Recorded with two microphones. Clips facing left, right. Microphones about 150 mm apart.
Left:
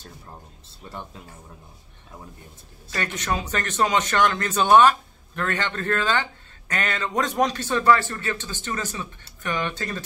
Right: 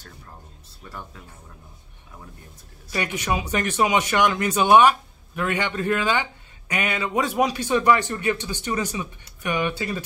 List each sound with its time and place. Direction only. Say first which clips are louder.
0.8 s speech: left 2 dB; 25° left (ahead or behind)
2.9 s speech: right 2 dB; 15° right (ahead or behind)